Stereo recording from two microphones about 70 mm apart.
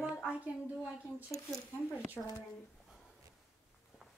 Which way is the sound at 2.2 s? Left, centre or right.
Left.